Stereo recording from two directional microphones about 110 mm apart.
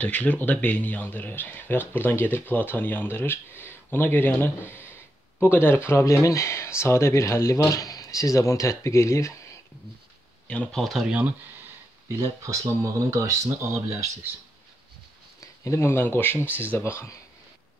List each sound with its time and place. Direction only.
0.0 s speech: 10° left (ahead or behind)
10.5 s speech: 10° left (ahead or behind)
10.8 s speech: 5° right (ahead or behind)
12.2 s speech: 30° right (ahead or behind)
15.4 s speech: 25° left (ahead or behind)